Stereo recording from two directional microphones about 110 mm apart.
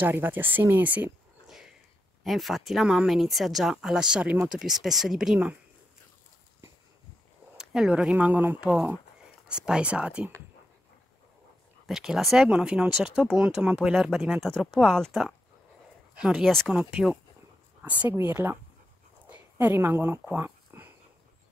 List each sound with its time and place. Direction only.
0.0 s speech: 20° right (ahead or behind)
2.2 s speech: centre (ahead or behind)
7.5 s speech: 5° right (ahead or behind)
11.8 s speech: 5° right (ahead or behind)
16.2 s speech: 5° right (ahead or behind)
18.1 s speech: 20° right (ahead or behind)
19.2 s a sound: 15° right (ahead or behind)